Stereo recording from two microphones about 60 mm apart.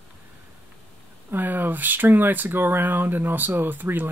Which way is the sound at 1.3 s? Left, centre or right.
Right.